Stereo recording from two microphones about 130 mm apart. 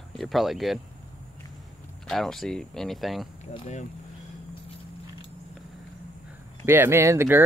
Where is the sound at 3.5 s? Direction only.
55° left (ahead or behind).